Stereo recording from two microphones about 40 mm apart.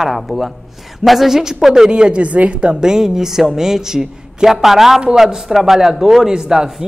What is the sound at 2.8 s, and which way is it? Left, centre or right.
A woman's voice, centre.